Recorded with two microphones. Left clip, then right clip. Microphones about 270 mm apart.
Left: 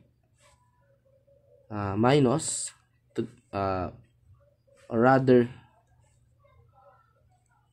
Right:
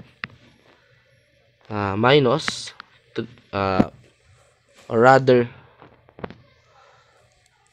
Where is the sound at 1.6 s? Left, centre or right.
Centre.